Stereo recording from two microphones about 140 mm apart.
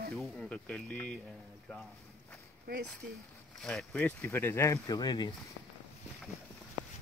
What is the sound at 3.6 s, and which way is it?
Speech, 5° left (ahead or behind).